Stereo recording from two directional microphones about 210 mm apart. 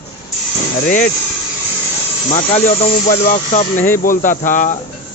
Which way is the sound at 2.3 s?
35° left (ahead or behind).